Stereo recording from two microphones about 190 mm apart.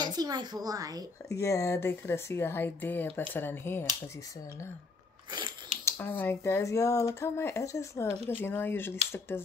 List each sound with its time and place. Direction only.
0.0 s a woman's voice: 20° right (ahead or behind)
1.3 s speech: 15° left (ahead or behind)
5.3 s biting: 25° right (ahead or behind)
5.9 s speech: 10° left (ahead or behind)